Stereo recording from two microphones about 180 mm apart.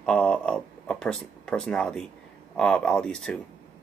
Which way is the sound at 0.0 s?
5° left (ahead or behind).